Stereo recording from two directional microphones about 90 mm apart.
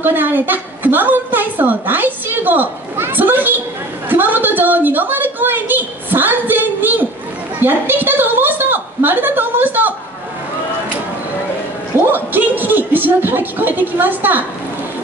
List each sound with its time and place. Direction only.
0.0 s a woman's voice: 20° right (ahead or behind)
12.1 s speech: 20° right (ahead or behind)